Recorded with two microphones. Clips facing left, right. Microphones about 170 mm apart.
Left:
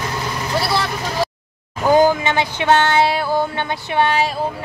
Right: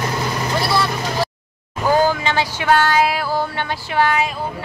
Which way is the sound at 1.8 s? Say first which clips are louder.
Left 3 dB; 20° left (ahead or behind).